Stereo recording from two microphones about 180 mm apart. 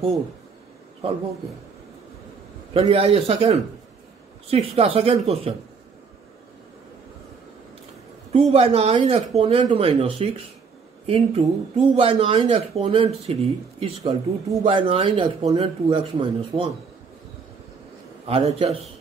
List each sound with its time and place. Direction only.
2.7 s speech: 30° right (ahead or behind)
8.3 s speech: 35° right (ahead or behind)
18.2 s speech: 35° right (ahead or behind)